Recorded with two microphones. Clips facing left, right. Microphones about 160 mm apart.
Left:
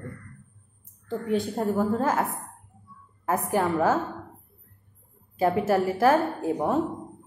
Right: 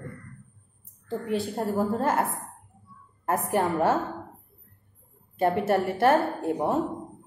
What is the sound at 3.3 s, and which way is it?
Speech, centre (ahead or behind).